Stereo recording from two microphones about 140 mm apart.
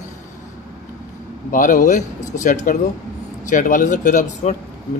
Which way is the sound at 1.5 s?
65° left (ahead or behind).